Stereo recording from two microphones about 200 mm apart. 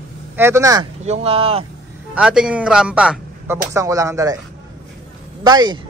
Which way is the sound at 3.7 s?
15° right (ahead or behind).